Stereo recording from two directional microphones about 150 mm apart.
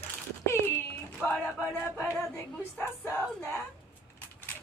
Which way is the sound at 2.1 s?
15° left (ahead or behind).